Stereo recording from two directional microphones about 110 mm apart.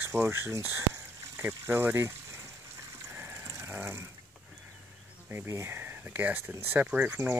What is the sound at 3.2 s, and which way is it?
Dog, 20° right (ahead or behind).